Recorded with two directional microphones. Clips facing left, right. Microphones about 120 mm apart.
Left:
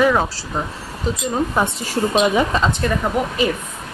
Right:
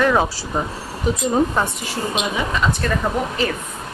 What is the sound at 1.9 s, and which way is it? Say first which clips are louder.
Speech: left 6 dB; 40° left (ahead or behind).